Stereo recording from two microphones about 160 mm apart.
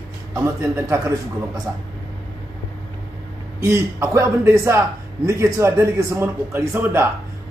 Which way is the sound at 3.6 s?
15° right (ahead or behind).